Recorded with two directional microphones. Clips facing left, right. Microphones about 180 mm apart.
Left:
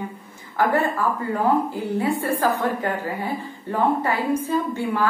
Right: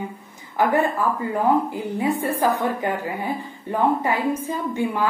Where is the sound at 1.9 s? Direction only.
15° right (ahead or behind).